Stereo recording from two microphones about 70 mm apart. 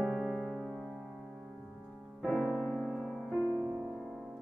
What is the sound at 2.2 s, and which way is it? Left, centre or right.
Music, centre.